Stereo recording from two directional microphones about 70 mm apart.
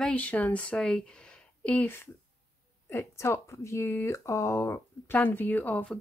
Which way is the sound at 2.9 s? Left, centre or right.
Left.